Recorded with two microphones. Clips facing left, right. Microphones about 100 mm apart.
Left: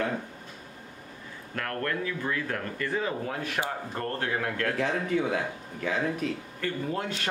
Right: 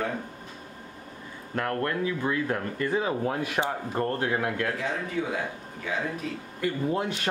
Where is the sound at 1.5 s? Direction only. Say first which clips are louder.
Right 3 dB; 20° right (ahead or behind).